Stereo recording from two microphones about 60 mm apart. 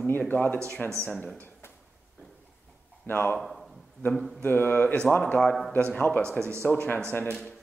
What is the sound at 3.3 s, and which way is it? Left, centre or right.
Speech, centre.